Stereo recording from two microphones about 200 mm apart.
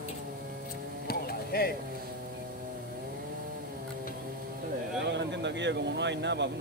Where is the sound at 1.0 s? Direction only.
50° left (ahead or behind).